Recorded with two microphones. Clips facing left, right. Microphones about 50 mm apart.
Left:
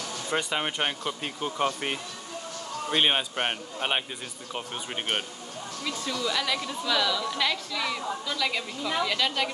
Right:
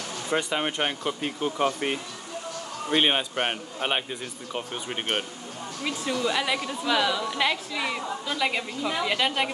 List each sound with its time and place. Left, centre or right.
0.3 s a man's voice: centre
2.9 s a man's voice: centre
5.9 s a woman's voice: right